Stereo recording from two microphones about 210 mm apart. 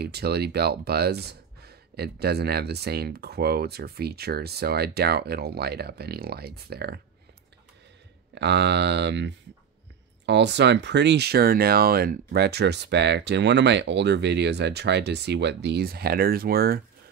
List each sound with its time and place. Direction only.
0.0 s speech: 50° right (ahead or behind)
8.4 s speech: 55° right (ahead or behind)